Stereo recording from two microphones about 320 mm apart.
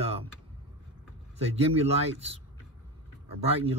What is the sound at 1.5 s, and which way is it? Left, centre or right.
Speech, centre.